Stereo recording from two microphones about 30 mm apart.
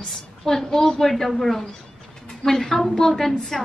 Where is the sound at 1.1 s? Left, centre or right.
Centre.